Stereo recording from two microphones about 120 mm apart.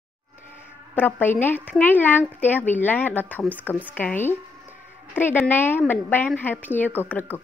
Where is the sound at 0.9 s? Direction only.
15° left (ahead or behind).